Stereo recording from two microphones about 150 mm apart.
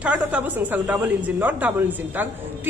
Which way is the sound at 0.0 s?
10° right (ahead or behind).